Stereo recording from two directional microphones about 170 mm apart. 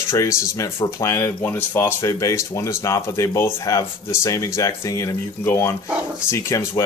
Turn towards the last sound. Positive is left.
turn(degrees=15)  # may be behind; listen again after turning